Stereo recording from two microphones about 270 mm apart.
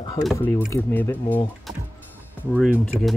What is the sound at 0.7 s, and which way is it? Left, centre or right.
Speech, centre.